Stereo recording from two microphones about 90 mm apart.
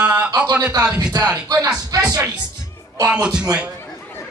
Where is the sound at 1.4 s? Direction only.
45° right (ahead or behind).